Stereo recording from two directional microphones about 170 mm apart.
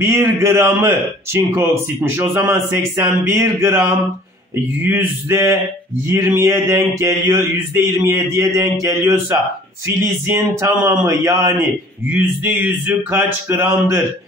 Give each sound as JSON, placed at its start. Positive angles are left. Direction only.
{"t": 0.0, "sound": "a man's voice", "side_deg": -15}
{"t": 5.3, "sound": "a man's voice", "side_deg": -15}